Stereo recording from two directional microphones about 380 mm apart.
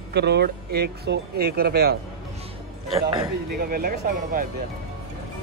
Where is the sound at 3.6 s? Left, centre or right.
Right.